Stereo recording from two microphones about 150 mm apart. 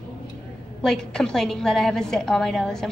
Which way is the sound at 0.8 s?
5° left (ahead or behind).